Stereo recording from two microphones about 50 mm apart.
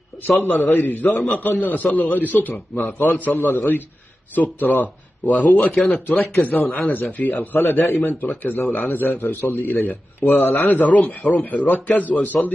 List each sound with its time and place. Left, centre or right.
0.5 s a man's voice: left